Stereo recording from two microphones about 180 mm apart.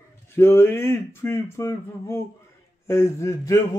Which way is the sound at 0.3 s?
15° left (ahead or behind).